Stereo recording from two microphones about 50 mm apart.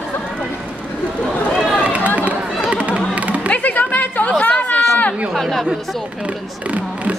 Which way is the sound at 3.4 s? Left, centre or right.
Left.